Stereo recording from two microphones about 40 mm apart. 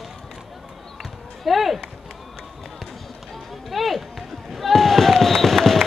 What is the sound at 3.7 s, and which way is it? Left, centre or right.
Run, centre.